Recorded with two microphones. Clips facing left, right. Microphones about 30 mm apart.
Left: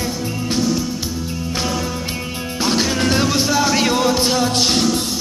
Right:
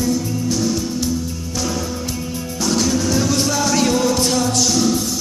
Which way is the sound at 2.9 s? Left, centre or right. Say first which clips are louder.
Left 1 dB; left.